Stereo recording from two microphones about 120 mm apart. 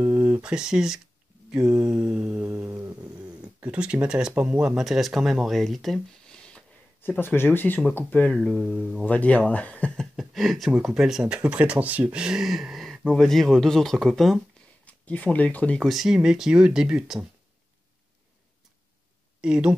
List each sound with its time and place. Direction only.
0.0 s mantra: 15° right (ahead or behind)
2.7 s a sound: 20° right (ahead or behind)
3.6 s mantra: 10° right (ahead or behind)
4.4 s speech: 10° right (ahead or behind); by 8.4 s 15° left (ahead or behind)
8.4 s speech: centre (ahead or behind)
9.0 s speech: 10° left (ahead or behind)
10.1 s speech: centre (ahead or behind)
14.9 s speech: 10° left (ahead or behind)
15.8 s speech: centre (ahead or behind)
19.4 s mantra: 10° right (ahead or behind)